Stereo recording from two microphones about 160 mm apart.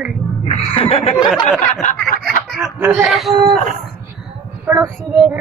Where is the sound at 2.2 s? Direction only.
Centre (ahead or behind).